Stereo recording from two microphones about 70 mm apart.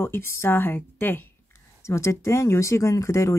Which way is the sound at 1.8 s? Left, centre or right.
Left.